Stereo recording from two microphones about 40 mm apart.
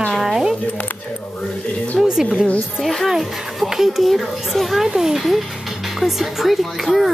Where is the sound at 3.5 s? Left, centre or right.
Centre.